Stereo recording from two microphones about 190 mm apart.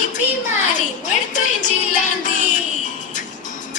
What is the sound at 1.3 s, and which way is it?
Music, 40° left (ahead or behind).